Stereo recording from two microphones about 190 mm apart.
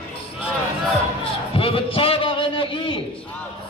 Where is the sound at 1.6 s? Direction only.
30° left (ahead or behind).